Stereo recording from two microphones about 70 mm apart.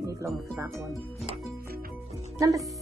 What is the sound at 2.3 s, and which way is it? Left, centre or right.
Speech, right.